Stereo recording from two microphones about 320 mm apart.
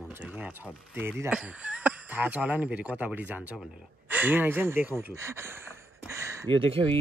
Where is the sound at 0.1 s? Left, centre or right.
Centre.